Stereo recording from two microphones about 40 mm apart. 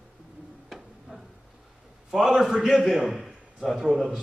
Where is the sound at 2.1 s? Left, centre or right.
Centre.